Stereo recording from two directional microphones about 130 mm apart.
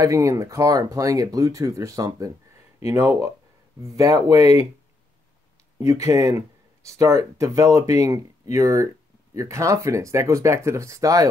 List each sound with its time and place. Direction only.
0.0 s speech: 25° right (ahead or behind)
5.8 s speech: 25° right (ahead or behind)